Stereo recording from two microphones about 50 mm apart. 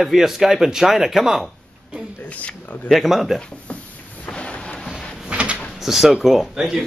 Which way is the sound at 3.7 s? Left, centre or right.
Left.